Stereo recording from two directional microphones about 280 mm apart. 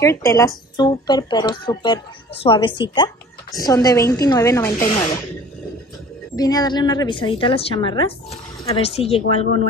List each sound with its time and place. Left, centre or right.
0.0 s a woman's voice: centre
6.3 s a woman's voice: centre